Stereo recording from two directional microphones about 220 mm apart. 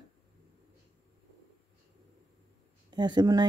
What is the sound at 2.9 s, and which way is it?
Speech, 20° right (ahead or behind).